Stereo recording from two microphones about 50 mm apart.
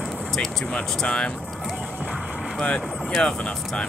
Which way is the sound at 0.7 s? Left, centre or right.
Centre.